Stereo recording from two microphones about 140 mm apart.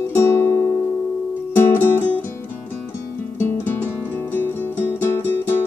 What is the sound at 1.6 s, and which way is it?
Music, 15° left (ahead or behind).